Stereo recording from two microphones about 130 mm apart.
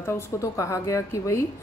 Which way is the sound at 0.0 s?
25° left (ahead or behind).